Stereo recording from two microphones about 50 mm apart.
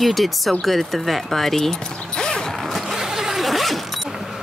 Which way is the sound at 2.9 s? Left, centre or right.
Centre.